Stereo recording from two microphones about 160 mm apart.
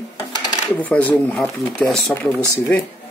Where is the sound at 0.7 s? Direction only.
10° left (ahead or behind).